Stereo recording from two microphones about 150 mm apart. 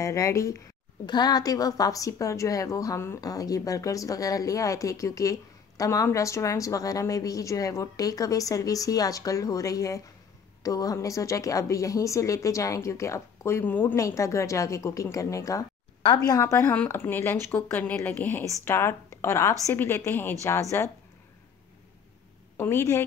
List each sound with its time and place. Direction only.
0.0 s a woman's voice: 20° left (ahead or behind)
22.6 s a woman's voice: 15° left (ahead or behind)